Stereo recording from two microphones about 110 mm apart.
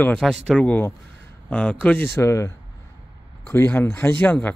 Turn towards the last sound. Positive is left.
turn(degrees=15)  # may be behind; listen again after turning